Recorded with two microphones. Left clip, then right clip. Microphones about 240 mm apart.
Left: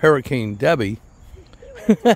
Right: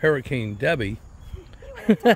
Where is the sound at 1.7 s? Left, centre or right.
Centre.